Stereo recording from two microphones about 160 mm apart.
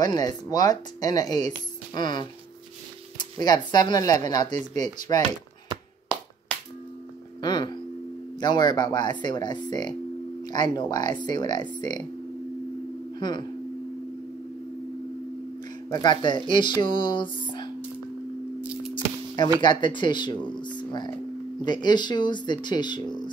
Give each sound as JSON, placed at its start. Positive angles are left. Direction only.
{"t": 0.0, "sound": "speech", "side_deg": 25}
{"t": 7.4, "sound": "speech", "side_deg": 30}
{"t": 13.2, "sound": "speech", "side_deg": 30}
{"t": 15.9, "sound": "speech", "side_deg": 30}
{"t": 18.6, "sound": "a sound", "side_deg": -5}
{"t": 18.9, "sound": "a sound", "side_deg": 30}
{"t": 19.6, "sound": "speech", "side_deg": 30}
{"t": 20.7, "sound": "music", "side_deg": 30}
{"t": 21.5, "sound": "speech", "side_deg": 25}